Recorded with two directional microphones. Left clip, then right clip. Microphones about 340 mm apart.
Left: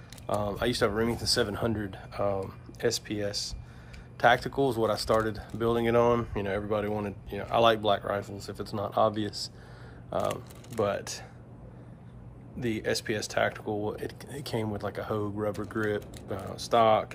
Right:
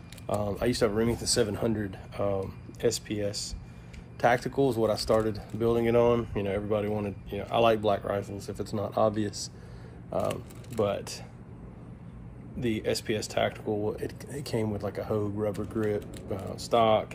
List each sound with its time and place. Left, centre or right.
0.3 s speech: centre
0.6 s speech: centre
12.6 s speech: centre